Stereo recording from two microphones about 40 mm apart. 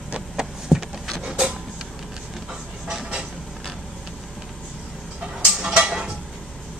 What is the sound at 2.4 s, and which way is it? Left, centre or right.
Train, right.